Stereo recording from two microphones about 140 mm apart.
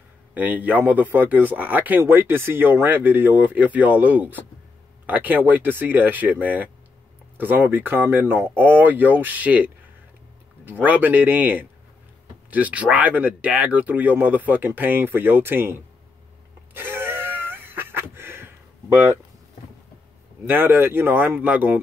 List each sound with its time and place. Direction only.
0.3 s speech: 10° right (ahead or behind)
16.7 s a sound: 15° right (ahead or behind)
20.4 s speech: 15° right (ahead or behind)